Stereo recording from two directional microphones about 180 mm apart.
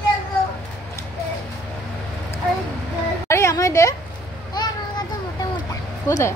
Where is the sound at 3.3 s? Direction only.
15° left (ahead or behind).